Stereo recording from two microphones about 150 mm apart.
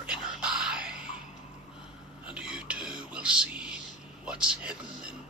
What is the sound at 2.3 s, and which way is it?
Speech, 5° right (ahead or behind).